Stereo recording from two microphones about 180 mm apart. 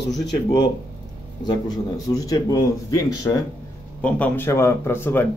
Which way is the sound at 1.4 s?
20° left (ahead or behind).